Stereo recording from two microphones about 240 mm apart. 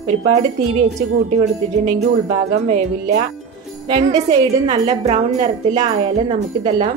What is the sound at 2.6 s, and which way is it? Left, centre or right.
Speech, right.